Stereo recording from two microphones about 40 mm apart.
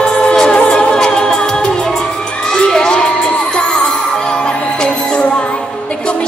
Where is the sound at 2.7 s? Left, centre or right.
Centre.